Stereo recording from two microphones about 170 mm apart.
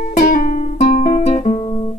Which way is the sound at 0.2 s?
55° left (ahead or behind).